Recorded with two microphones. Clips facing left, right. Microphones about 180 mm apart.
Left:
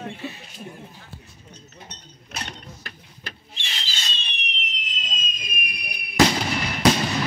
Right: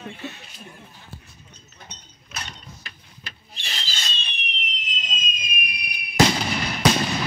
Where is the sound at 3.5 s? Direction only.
40° right (ahead or behind).